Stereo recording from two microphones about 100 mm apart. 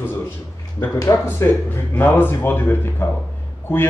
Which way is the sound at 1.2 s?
25° left (ahead or behind).